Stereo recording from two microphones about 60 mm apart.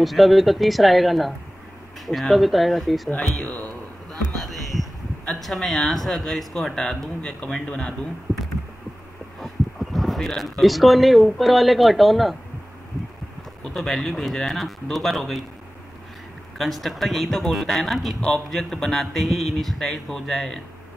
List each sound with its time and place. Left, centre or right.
0.0 s a man's voice: centre
3.4 s speech: left
4.4 s a sound: centre
5.2 s a man's voice: centre
9.4 s speech: centre
13.7 s a man's voice: centre
16.5 s a man's voice: centre